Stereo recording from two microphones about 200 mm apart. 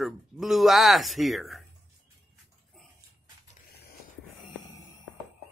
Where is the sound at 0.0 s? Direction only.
Centre (ahead or behind).